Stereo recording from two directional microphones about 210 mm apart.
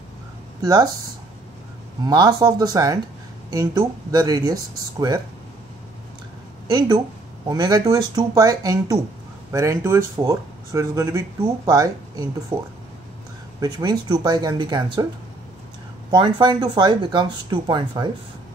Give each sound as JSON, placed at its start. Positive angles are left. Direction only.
{"t": 0.6, "sound": "speech", "side_deg": -20}
{"t": 2.0, "sound": "speech", "side_deg": -15}
{"t": 7.4, "sound": "speech", "side_deg": -20}
{"t": 13.6, "sound": "speech", "side_deg": -15}
{"t": 16.1, "sound": "speech", "side_deg": -20}